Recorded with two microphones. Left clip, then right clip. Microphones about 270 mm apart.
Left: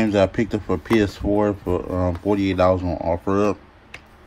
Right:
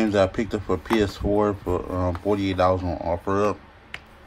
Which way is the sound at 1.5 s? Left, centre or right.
Right.